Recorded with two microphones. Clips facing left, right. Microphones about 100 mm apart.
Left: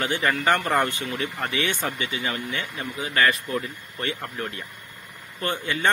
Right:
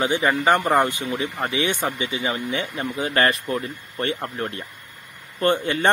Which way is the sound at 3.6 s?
35° right (ahead or behind).